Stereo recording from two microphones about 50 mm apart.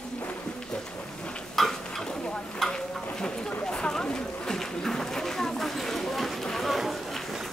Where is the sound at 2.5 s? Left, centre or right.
Centre.